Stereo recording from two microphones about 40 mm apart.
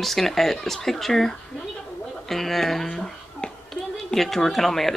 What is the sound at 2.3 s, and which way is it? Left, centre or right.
Speech, centre.